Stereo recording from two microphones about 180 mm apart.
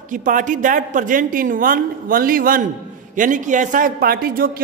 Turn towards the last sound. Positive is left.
turn(degrees=-55)  # may be behind; listen again after turning